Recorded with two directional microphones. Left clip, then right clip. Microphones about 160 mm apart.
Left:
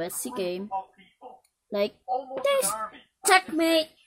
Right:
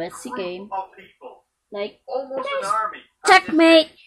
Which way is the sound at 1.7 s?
55° left (ahead or behind).